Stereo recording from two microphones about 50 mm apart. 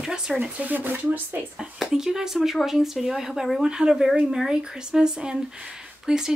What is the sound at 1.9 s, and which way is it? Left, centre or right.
Speech, centre.